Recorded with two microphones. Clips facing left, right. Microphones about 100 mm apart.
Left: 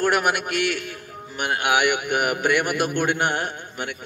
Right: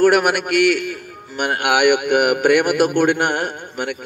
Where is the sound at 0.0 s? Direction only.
55° right (ahead or behind).